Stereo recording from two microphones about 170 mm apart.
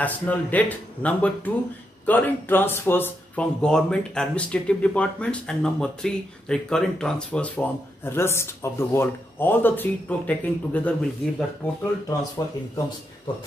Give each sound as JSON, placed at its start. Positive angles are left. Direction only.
{"t": 0.0, "sound": "speech", "side_deg": 10}
{"t": 12.4, "sound": "speech", "side_deg": 20}